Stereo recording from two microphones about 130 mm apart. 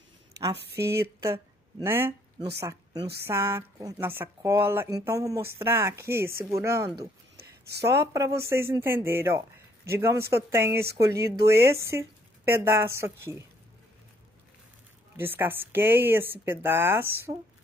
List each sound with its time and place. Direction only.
0.4 s speech: 25° right (ahead or behind)
15.1 s speech: 15° right (ahead or behind)